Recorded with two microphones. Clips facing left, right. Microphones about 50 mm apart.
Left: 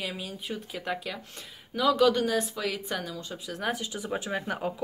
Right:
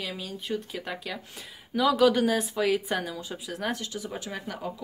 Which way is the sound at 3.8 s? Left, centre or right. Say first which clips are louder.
Left 2 dB; left.